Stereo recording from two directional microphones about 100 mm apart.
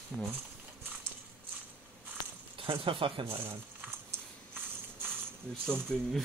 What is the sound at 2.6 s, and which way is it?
Speech, 65° right (ahead or behind).